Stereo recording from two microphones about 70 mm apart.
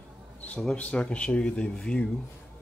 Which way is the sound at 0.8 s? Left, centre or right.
Centre.